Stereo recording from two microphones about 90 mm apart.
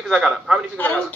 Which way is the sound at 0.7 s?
20° left (ahead or behind).